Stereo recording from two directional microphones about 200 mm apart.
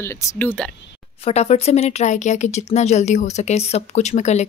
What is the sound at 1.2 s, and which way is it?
Speech, 30° left (ahead or behind).